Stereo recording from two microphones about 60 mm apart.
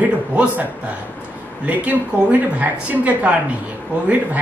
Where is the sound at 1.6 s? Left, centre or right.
Right.